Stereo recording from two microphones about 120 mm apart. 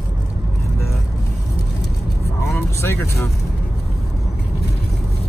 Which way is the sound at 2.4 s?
20° left (ahead or behind).